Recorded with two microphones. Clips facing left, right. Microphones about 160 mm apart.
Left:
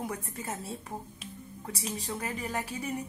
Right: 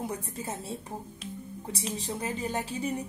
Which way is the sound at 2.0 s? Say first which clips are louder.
Right 4 dB; 25° right (ahead or behind).